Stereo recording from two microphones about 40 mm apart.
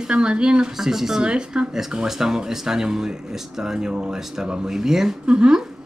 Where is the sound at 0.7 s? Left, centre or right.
Centre.